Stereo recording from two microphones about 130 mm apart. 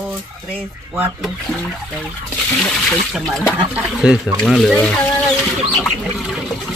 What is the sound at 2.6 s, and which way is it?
Speech, 5° left (ahead or behind).